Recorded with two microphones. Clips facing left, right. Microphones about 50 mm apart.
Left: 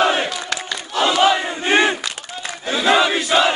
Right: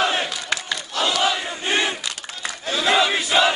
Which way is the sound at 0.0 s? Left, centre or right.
Centre.